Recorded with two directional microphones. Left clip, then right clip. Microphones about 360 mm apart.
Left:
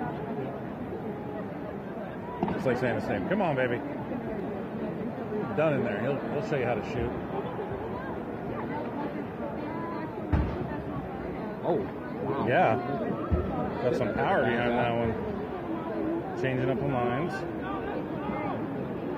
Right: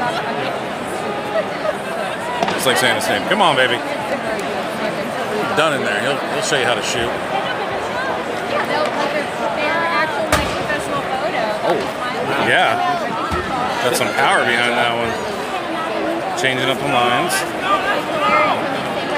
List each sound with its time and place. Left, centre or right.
2.7 s speech: centre
6.5 s speech: centre
12.4 s a sound: centre
14.2 s speech: centre